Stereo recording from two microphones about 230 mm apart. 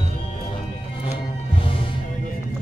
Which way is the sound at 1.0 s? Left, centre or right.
Left.